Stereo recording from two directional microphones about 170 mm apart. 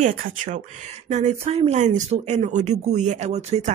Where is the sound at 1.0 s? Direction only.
45° right (ahead or behind).